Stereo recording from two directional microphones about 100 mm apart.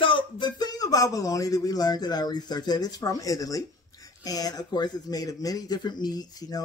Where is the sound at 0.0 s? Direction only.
55° left (ahead or behind).